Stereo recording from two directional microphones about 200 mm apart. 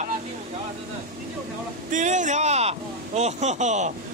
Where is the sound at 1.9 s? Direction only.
40° right (ahead or behind).